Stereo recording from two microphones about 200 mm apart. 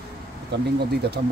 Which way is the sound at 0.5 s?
55° right (ahead or behind).